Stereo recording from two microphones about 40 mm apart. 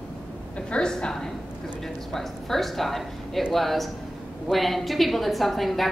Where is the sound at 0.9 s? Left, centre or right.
Centre.